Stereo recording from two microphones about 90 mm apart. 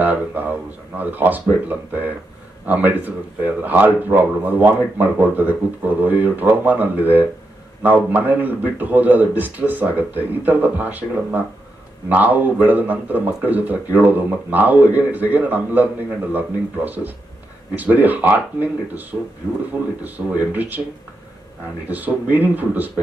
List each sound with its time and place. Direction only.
0.0 s speech: 20° right (ahead or behind)
21.8 s speech: 20° right (ahead or behind)